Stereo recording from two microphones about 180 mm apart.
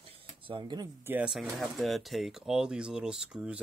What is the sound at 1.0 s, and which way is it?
Speech, 5° right (ahead or behind).